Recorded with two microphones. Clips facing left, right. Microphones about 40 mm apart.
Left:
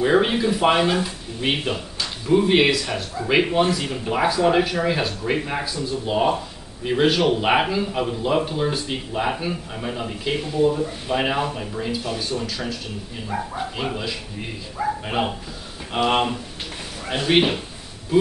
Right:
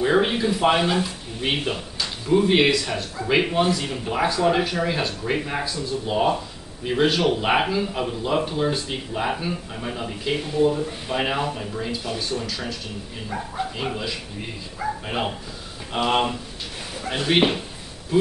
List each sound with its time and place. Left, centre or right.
0.0 s speech: centre